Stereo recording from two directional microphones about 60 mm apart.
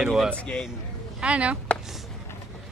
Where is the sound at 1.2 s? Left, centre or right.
Right.